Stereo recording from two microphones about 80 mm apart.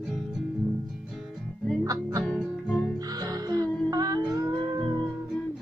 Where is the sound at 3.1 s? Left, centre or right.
Right.